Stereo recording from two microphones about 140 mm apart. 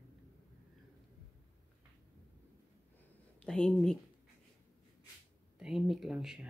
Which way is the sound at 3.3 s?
5° left (ahead or behind).